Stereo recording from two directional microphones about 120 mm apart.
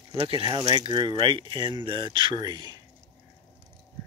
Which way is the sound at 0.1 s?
50° right (ahead or behind).